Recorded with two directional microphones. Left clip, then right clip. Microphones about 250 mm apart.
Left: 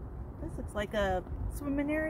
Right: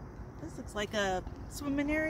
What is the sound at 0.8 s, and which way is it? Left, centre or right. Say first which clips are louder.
Speech: left 1 dB; centre.